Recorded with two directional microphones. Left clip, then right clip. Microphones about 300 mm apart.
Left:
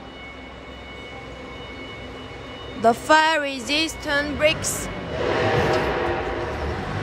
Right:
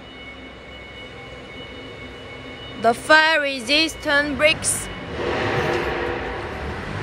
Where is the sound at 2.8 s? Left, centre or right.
Centre.